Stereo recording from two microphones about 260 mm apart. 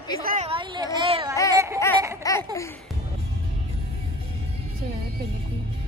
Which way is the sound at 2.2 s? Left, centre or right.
Centre.